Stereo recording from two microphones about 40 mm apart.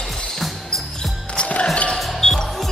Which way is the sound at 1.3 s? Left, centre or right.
Left.